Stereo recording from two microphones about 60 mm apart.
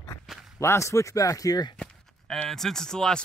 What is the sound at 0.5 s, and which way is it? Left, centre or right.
Speech, left.